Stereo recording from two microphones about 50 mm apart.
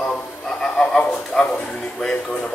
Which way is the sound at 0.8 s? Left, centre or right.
Centre.